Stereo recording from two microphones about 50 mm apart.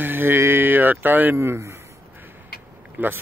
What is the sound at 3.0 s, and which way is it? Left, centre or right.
Speech, right.